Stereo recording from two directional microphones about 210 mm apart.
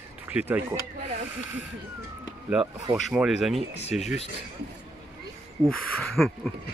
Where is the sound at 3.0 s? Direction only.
Centre (ahead or behind).